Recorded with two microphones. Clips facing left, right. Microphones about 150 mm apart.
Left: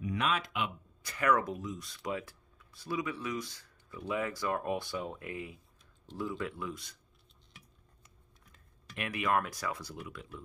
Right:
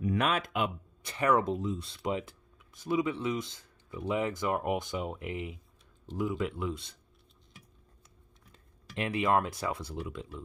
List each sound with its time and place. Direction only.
0.0 s speech: 50° right (ahead or behind)
1.0 s speech: 25° right (ahead or behind)
8.9 s speech: 25° right (ahead or behind)